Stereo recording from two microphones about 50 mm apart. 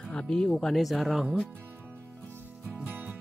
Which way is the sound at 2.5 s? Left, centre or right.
Right.